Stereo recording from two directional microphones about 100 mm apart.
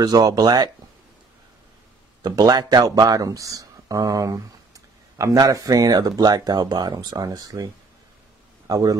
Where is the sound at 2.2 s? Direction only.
40° right (ahead or behind).